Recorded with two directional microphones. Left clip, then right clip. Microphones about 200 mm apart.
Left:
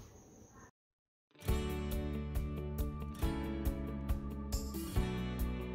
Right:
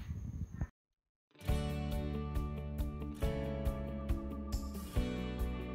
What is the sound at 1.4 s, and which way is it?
Music, centre (ahead or behind).